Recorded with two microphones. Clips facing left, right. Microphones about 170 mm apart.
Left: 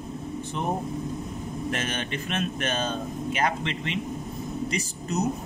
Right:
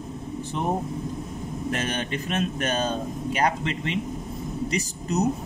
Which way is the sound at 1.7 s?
35° right (ahead or behind).